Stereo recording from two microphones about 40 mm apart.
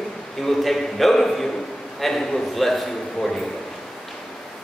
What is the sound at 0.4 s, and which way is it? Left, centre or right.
A man's voice, centre.